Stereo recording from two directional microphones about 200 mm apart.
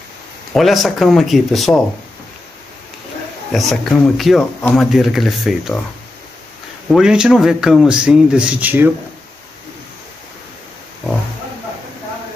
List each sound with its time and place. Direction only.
0.5 s a man's voice: centre (ahead or behind)
3.5 s a man's voice: centre (ahead or behind)
6.9 s a man's voice: 5° right (ahead or behind)